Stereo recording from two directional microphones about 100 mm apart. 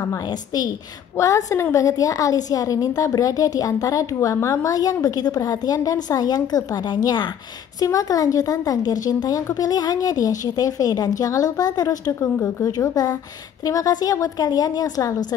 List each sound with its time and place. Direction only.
0.0 s a woman's voice: 35° left (ahead or behind)
12.7 s a woman's voice: 40° left (ahead or behind)